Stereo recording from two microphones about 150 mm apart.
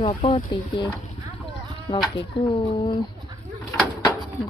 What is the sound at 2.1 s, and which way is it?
Speech, 35° left (ahead or behind).